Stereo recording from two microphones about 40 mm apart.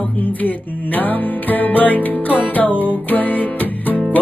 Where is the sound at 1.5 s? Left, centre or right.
Left.